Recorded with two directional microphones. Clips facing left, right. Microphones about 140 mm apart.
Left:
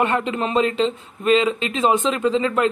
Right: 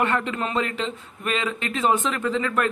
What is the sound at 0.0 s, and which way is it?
Speech, 20° left (ahead or behind).